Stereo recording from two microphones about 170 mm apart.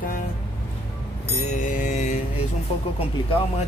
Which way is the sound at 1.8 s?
45° left (ahead or behind).